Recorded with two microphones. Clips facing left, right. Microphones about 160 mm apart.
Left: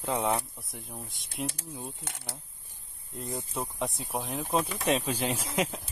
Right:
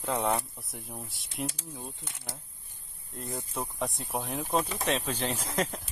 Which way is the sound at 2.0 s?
70° left (ahead or behind).